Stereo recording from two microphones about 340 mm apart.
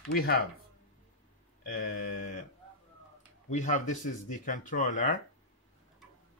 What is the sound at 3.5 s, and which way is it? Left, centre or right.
Speech, left.